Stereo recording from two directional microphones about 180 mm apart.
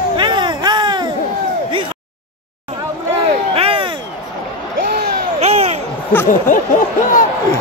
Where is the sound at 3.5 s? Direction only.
30° right (ahead or behind).